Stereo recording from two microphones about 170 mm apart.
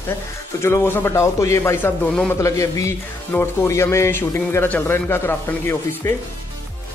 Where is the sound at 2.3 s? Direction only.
20° left (ahead or behind).